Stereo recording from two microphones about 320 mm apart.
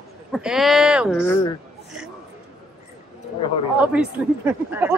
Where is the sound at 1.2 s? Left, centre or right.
Centre.